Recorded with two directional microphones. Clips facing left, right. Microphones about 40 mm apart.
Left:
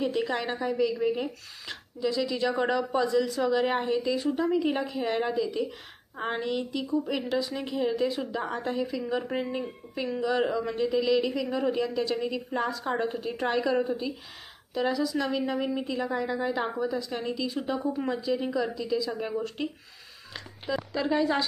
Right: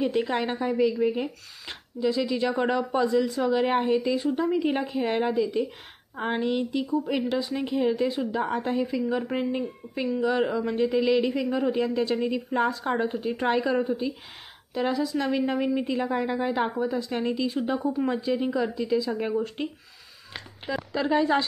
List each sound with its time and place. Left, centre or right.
0.0 s a woman's voice: right
9.1 s speech: centre
10.5 s a woman's voice: right
13.0 s speech: centre
14.7 s a woman's voice: right